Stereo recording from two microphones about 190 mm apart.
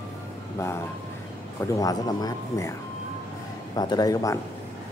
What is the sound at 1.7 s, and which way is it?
Speech, 20° left (ahead or behind).